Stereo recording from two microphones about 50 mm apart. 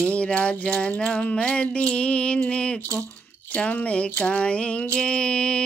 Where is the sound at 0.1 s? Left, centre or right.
Left.